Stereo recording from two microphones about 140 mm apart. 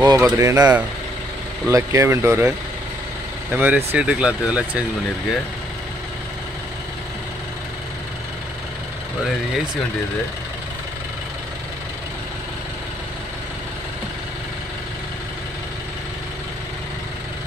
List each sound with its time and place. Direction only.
0.0 s speech: 25° right (ahead or behind)
1.7 s speech: 20° right (ahead or behind)
3.5 s speech: 10° right (ahead or behind)